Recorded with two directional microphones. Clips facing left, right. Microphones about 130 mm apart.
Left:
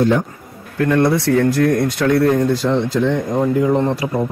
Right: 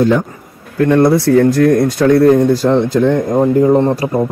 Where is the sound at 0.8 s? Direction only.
30° right (ahead or behind); by 3.4 s 50° right (ahead or behind).